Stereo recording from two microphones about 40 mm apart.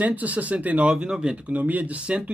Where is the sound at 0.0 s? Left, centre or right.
Right.